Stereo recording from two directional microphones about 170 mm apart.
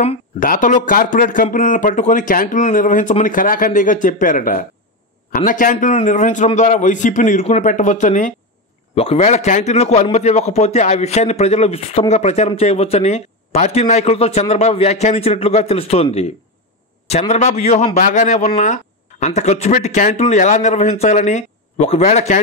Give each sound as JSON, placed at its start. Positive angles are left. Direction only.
{"t": 0.4, "sound": "speech", "side_deg": 50}
{"t": 8.9, "sound": "a man's voice", "side_deg": 35}